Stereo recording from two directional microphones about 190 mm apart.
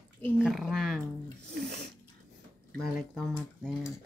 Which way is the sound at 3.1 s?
Centre (ahead or behind).